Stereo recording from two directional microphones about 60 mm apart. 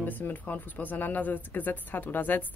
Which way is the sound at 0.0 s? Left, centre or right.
Left.